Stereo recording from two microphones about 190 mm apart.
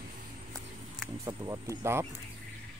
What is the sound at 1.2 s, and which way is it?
Speech, 15° right (ahead or behind).